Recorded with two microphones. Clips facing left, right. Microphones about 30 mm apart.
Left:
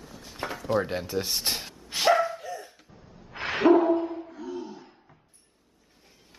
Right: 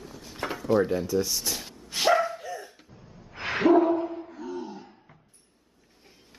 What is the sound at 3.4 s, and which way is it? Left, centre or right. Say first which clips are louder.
Bow-wow: left 1 dB; left.